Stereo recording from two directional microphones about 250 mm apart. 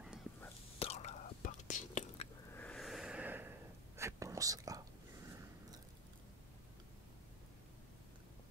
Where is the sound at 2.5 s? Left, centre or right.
Centre.